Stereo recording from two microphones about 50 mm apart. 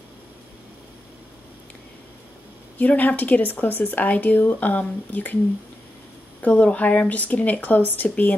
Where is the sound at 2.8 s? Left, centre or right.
Left.